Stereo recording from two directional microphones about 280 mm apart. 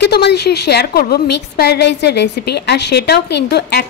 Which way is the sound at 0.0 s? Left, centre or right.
Left.